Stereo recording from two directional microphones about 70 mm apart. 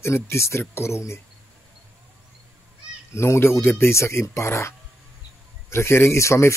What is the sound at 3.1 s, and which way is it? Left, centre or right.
Speech, left.